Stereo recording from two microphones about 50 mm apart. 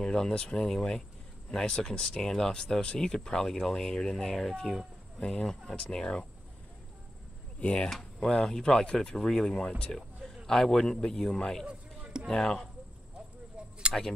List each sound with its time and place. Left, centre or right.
0.0 s speech: centre
5.2 s speech: centre
7.6 s speech: left
11.6 s a sound: right
12.3 s speech: centre
13.6 s a sound: right